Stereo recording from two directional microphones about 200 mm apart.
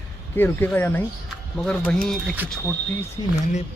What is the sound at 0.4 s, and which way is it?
Speech, 10° left (ahead or behind).